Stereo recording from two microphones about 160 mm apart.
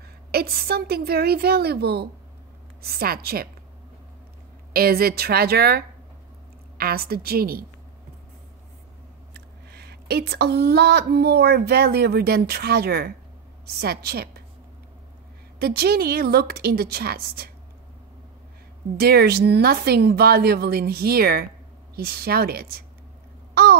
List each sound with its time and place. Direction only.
0.3 s a woman's voice: 75° right (ahead or behind)
2.8 s a woman's voice: 75° right (ahead or behind)
4.7 s a woman's voice: 70° right (ahead or behind)
9.3 s a woman's voice: 85° right
15.6 s a woman's voice: 80° right
18.9 s a woman's voice: 75° right (ahead or behind)
23.5 s babbling: 75° right (ahead or behind)